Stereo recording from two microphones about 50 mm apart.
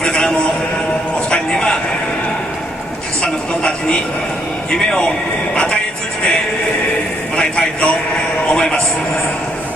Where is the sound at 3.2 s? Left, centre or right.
Centre.